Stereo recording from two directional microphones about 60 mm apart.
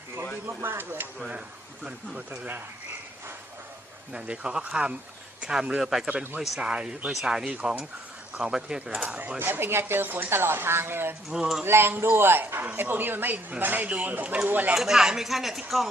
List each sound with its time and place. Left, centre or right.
0.5 s speech: right
4.1 s speech: centre
9.4 s speech: right
11.2 s speech: centre
11.6 s speech: right
14.7 s speech: centre